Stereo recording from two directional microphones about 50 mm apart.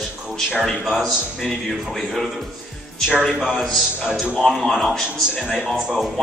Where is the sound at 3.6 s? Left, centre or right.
Centre.